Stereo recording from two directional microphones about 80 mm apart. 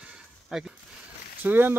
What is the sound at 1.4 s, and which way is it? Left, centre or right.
Speech, right.